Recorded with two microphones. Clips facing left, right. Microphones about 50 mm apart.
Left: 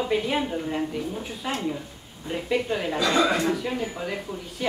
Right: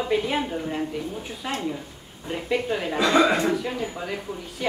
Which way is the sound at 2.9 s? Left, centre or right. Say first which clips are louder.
Right 3 dB; right.